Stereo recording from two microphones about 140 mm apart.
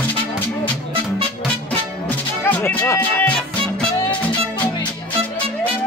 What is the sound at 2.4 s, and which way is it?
Music, 15° left (ahead or behind).